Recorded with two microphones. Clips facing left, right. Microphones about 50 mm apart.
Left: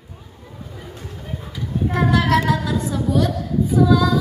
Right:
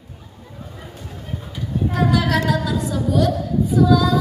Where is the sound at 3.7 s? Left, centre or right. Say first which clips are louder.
Even; left.